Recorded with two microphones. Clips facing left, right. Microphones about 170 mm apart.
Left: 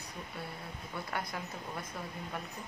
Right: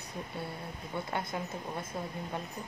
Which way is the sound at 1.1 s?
25° right (ahead or behind).